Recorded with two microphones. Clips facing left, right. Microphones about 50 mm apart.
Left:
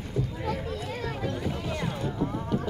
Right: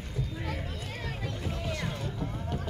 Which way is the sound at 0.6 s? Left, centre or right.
Centre.